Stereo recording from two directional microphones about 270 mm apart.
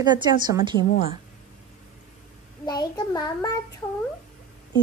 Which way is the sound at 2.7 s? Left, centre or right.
Centre.